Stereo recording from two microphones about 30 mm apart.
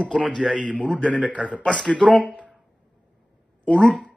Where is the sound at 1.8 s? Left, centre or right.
Left.